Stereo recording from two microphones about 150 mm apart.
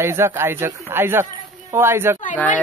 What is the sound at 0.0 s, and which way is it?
Speech, 15° right (ahead or behind).